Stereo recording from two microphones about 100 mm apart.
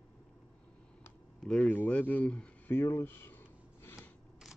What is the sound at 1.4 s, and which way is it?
Speech, 10° left (ahead or behind).